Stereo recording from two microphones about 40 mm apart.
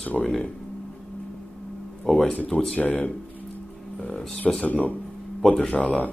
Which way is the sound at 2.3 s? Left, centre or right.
Left.